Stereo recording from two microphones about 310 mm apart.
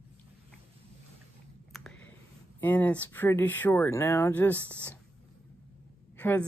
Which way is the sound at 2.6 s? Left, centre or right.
Centre.